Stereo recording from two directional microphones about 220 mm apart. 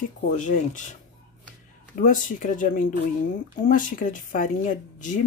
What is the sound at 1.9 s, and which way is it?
A woman's voice, 40° left (ahead or behind).